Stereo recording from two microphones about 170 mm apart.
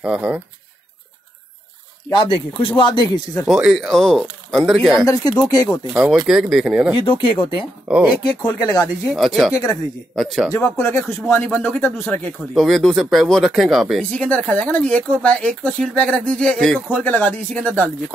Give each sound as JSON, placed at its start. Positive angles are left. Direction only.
{"t": 0.0, "sound": "speech", "side_deg": -5}
{"t": 2.0, "sound": "speech", "side_deg": 30}
{"t": 3.4, "sound": "speech", "side_deg": -5}
{"t": 5.0, "sound": "speech", "side_deg": 20}
{"t": 5.9, "sound": "speech", "side_deg": 0}
{"t": 7.0, "sound": "speech", "side_deg": 30}
{"t": 7.9, "sound": "speech", "side_deg": -5}
{"t": 9.1, "sound": "speech", "side_deg": 0}
{"t": 9.5, "sound": "speech", "side_deg": 20}
{"t": 10.1, "sound": "speech", "side_deg": 0}
{"t": 10.5, "sound": "speech", "side_deg": 15}